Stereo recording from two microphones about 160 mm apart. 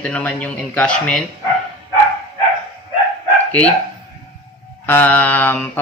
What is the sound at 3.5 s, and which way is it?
Speech, 10° left (ahead or behind).